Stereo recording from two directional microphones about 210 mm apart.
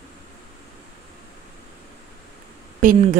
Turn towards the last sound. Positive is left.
turn(degrees=-40)  # may be behind; listen again after turning